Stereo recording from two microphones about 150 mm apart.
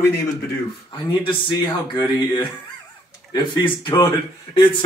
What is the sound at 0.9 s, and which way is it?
A man's voice, 35° left (ahead or behind).